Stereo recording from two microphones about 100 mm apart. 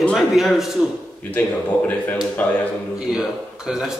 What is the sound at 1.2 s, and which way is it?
Speech, 15° left (ahead or behind).